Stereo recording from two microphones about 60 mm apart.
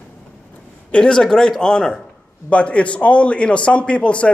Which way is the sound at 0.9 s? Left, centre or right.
Centre.